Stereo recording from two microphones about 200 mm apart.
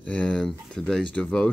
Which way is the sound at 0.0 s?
5° left (ahead or behind).